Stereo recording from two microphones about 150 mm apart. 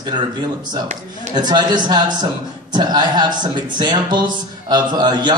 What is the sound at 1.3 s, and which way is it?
Speech, 30° right (ahead or behind).